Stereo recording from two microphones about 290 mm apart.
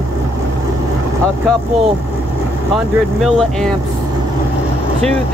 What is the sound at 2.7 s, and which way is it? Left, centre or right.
Speech, centre.